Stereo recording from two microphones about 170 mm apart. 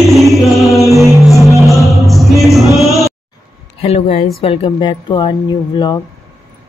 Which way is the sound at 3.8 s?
35° left (ahead or behind).